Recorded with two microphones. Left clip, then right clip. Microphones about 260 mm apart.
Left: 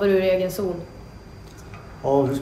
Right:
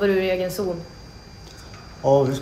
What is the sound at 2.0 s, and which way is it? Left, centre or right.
Speech, right.